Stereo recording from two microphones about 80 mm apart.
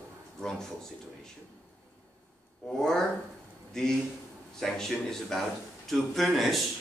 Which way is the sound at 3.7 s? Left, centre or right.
Centre.